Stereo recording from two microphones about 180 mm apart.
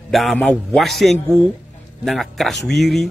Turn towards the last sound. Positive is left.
turn(degrees=0)  # may be behind; listen again after turning